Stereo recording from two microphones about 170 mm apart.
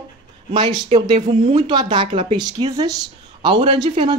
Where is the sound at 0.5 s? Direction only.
25° right (ahead or behind).